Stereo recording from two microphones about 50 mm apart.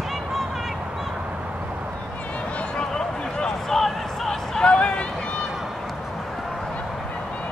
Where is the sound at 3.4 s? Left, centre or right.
Centre.